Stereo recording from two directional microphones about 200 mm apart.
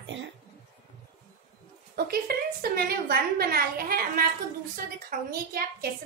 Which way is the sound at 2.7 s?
50° right (ahead or behind).